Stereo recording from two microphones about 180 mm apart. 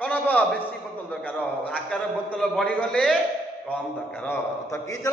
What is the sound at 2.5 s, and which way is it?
Speech, 5° left (ahead or behind).